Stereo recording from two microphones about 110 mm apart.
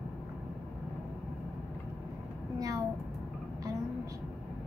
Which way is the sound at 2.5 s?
35° right (ahead or behind).